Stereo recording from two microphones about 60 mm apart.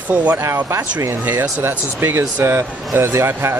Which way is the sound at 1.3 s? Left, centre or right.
Right.